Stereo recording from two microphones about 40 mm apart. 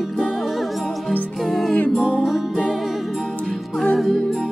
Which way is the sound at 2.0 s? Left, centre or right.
Right.